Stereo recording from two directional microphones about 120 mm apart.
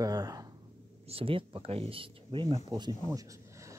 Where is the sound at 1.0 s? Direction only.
50° right (ahead or behind).